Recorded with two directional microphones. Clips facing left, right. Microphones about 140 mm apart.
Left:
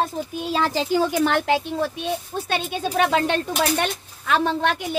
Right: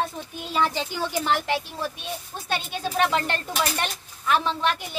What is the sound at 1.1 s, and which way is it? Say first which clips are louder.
Speech: left 5 dB; 65° left (ahead or behind).